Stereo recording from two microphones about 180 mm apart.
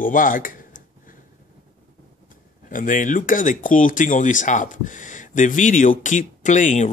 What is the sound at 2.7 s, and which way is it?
Speech, 45° left (ahead or behind).